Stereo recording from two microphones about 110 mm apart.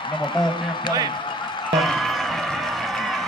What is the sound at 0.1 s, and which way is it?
Speech, 45° left (ahead or behind).